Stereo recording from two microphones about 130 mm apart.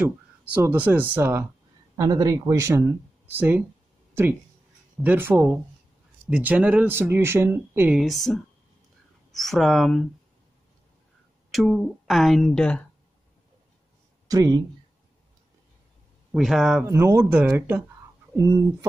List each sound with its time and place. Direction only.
0.6 s speech: 15° right (ahead or behind)
4.1 s a sound: 20° right (ahead or behind)
5.0 s speech: 15° right (ahead or behind)
8.0 s speech: centre (ahead or behind)
11.5 s speech: centre (ahead or behind)
14.2 s speech: 30° right (ahead or behind)
16.3 s a man's voice: centre (ahead or behind)
16.8 s speech: 20° right (ahead or behind)